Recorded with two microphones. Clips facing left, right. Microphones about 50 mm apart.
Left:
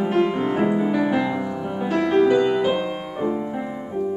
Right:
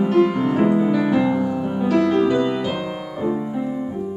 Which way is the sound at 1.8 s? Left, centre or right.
Centre.